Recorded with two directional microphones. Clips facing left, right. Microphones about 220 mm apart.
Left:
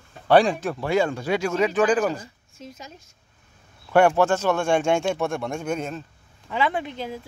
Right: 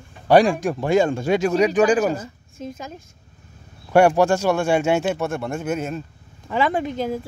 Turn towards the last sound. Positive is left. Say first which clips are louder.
# right 6 dB
turn(degrees=-45)  # may be behind; listen again after turning